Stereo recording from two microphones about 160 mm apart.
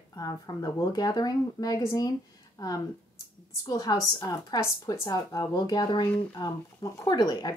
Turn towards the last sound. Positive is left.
turn(degrees=25)  # may be behind; listen again after turning